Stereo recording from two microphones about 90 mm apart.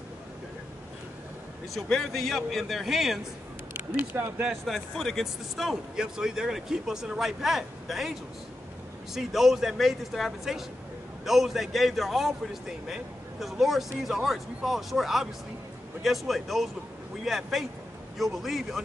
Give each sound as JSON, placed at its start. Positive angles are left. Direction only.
{"t": 1.7, "sound": "a man's voice", "side_deg": 0}
{"t": 3.7, "sound": "speech", "side_deg": -20}
{"t": 4.5, "sound": "a man's voice", "side_deg": 0}